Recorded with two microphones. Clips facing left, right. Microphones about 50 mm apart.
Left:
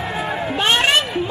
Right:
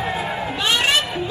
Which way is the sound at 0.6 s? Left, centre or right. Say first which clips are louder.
Left 3 dB; left.